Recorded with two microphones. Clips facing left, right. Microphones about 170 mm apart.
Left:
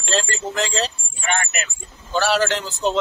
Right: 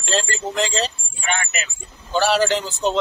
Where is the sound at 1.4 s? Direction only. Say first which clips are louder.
Left 2 dB; 55° left (ahead or behind).